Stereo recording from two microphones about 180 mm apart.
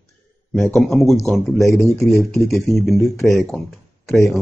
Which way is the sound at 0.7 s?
Centre (ahead or behind).